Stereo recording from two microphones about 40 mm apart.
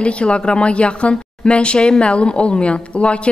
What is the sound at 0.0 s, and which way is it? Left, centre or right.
A woman's voice, left.